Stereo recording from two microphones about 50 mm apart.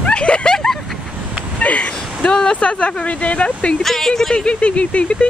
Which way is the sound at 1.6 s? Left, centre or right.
Left.